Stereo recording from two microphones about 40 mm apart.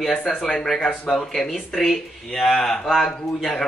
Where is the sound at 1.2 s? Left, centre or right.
Centre.